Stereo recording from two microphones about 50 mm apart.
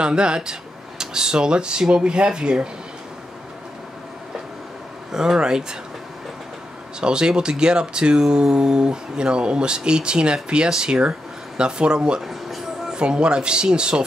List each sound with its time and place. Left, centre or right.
0.0 s speech: centre
5.1 s speech: centre
7.0 s speech: centre
12.2 s a sound: centre
12.9 s speech: centre